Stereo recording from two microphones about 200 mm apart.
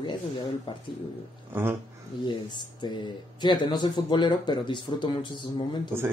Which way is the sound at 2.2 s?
20° left (ahead or behind).